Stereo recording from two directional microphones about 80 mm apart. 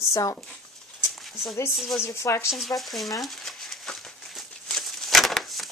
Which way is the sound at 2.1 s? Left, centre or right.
Left.